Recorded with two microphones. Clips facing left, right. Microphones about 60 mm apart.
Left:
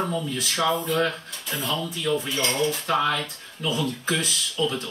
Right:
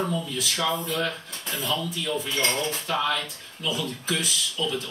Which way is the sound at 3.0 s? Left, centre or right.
Centre.